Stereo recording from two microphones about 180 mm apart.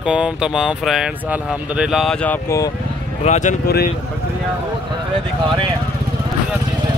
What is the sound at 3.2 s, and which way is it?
Speech, 40° left (ahead or behind).